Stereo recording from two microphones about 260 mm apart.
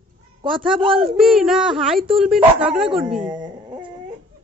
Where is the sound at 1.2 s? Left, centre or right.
Centre.